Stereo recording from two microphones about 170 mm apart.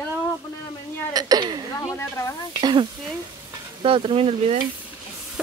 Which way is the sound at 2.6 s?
25° right (ahead or behind).